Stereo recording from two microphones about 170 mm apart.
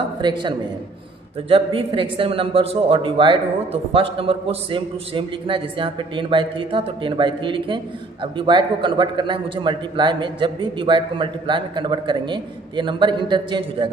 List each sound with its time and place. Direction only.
0.2 s a man's voice: 25° right (ahead or behind)